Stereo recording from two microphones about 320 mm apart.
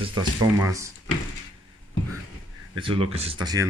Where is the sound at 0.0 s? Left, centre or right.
Centre.